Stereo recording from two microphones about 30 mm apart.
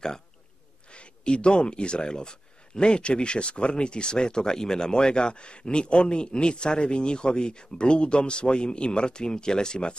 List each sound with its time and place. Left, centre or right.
0.9 s speech: left